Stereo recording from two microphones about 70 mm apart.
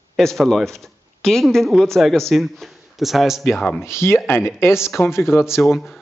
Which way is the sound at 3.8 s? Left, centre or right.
Left.